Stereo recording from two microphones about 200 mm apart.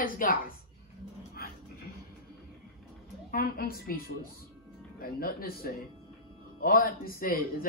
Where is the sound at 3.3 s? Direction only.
45° left (ahead or behind).